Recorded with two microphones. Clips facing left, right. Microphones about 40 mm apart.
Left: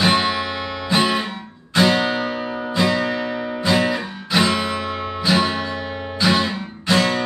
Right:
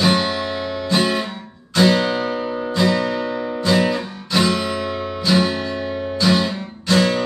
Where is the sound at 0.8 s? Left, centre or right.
Centre.